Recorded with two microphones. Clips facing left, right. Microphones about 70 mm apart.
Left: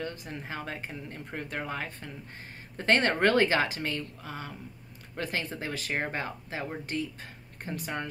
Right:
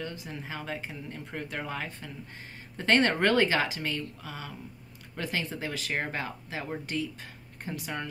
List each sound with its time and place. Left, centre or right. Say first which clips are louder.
0.0 s speech: left 1 dB; left
7.6 s speech: left 1 dB; left